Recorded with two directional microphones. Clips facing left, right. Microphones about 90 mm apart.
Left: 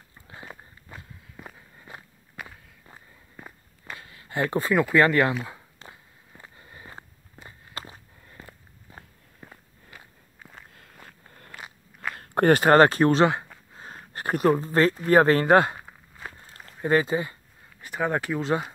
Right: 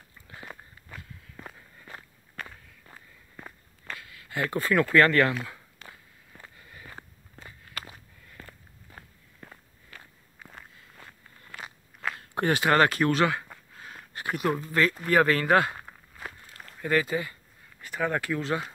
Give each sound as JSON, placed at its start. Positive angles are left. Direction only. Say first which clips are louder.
{"t": 0.9, "sound": "walk", "louder": "left 1 dB", "side_deg": 20}
{"t": 1.4, "sound": "walk", "louder": "left 1 dB", "side_deg": 10}
{"t": 4.0, "sound": "a sound", "louder": "left 4 dB", "side_deg": 30}
{"t": 6.5, "sound": "walk", "louder": "left 2 dB", "side_deg": 30}
{"t": 11.5, "sound": "crunch", "louder": "right 1 dB", "side_deg": 5}
{"t": 12.2, "sound": "speech", "louder": "left 7 dB", "side_deg": 45}
{"t": 13.7, "sound": "a sound", "louder": "left 3 dB", "side_deg": 35}
{"t": 14.6, "sound": "speech", "louder": "left 4 dB", "side_deg": 35}
{"t": 15.7, "sound": "walk", "louder": "left 1 dB", "side_deg": 5}
{"t": 16.3, "sound": "walk", "louder": "left 1 dB", "side_deg": 25}
{"t": 17.8, "sound": "speech", "louder": "left 2 dB", "side_deg": 20}